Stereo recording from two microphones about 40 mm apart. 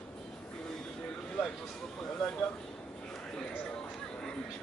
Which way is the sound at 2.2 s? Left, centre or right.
Left.